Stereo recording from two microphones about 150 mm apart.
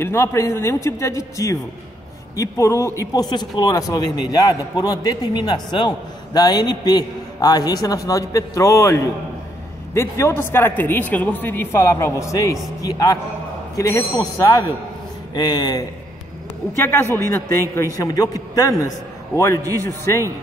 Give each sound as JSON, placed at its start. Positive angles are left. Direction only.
{"t": 0.0, "sound": "speech", "side_deg": 15}
{"t": 16.7, "sound": "speech", "side_deg": 15}